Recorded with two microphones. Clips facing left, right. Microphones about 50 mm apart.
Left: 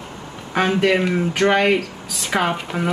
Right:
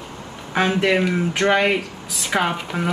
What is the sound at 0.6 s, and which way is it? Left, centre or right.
Speech, centre.